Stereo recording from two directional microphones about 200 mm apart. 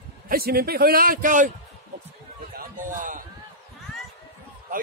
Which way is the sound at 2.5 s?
40° right (ahead or behind).